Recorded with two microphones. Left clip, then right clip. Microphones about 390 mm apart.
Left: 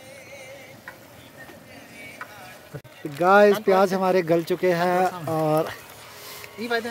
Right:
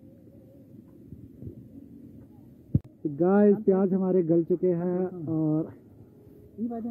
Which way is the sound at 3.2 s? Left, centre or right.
Centre.